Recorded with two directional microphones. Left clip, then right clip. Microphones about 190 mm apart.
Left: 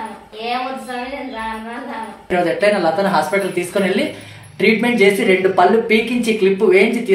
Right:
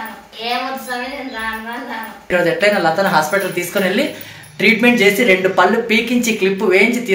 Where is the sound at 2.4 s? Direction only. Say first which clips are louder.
Right 1 dB; 10° right (ahead or behind).